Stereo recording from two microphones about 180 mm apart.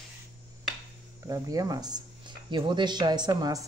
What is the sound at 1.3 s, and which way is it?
Speech, 20° right (ahead or behind).